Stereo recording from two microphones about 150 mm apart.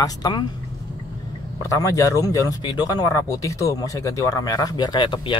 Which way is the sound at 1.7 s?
20° left (ahead or behind).